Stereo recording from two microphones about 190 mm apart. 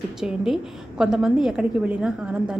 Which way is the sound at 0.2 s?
Centre (ahead or behind).